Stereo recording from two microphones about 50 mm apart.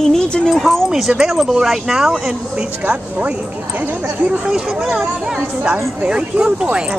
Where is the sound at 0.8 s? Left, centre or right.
Centre.